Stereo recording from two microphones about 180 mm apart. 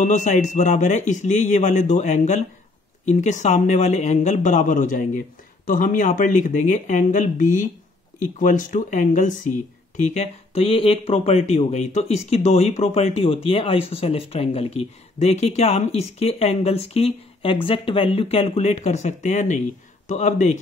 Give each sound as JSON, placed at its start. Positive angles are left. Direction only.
{"t": 0.0, "sound": "speech", "side_deg": 45}